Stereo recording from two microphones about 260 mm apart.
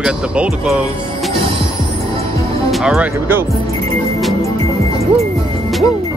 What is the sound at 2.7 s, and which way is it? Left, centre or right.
Speech, centre.